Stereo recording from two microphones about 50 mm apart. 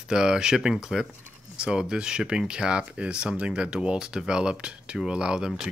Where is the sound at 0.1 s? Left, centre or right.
Centre.